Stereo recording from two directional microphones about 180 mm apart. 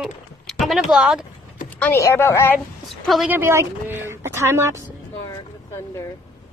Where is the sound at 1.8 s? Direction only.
15° left (ahead or behind).